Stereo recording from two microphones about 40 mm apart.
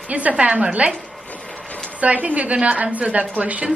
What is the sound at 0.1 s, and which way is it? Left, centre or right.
Speech, right.